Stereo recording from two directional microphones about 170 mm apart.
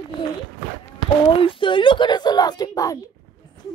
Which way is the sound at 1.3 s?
30° left (ahead or behind).